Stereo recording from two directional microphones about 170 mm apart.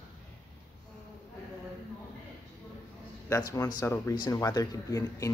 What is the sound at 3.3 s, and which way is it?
Speech, 20° left (ahead or behind).